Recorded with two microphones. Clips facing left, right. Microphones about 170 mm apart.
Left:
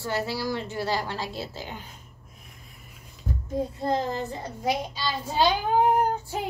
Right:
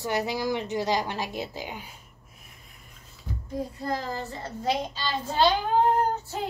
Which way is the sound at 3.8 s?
25° left (ahead or behind).